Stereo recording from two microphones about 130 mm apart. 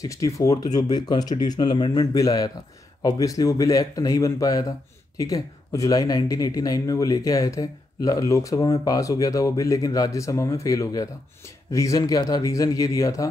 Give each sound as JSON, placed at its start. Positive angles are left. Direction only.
{"t": 0.0, "sound": "speech", "side_deg": 25}